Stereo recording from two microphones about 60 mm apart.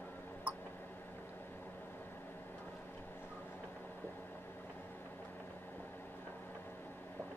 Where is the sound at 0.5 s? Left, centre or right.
Right.